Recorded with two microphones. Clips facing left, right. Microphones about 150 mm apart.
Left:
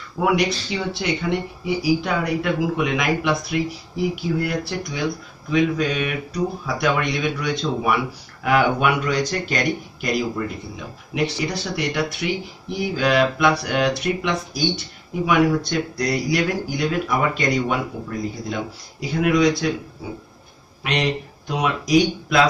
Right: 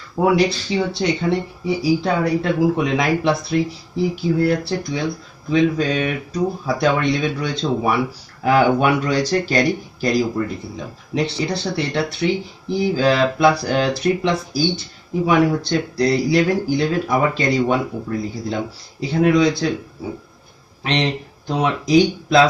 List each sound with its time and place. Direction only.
0.2 s speech: 35° right (ahead or behind)
20.8 s speech: 30° right (ahead or behind)